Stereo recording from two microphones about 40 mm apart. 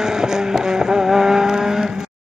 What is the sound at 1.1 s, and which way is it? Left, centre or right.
Vehicle, centre.